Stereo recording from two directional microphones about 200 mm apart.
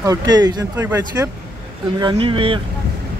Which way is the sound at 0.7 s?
10° right (ahead or behind).